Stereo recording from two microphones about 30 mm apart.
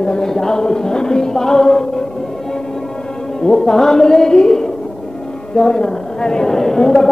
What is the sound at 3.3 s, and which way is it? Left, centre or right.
A woman's voice, centre.